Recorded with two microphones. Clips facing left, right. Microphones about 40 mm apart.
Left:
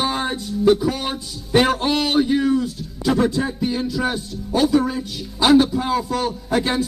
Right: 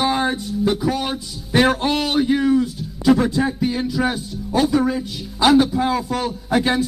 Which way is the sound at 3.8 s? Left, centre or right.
Right.